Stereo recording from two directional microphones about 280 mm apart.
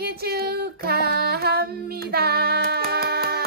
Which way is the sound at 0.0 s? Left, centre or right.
Right.